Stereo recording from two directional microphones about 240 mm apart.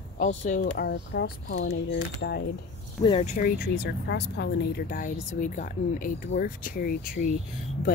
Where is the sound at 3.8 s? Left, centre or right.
Left.